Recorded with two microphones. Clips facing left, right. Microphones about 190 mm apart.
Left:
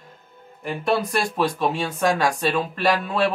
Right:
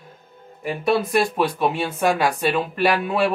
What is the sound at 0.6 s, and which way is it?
Speech, 5° right (ahead or behind).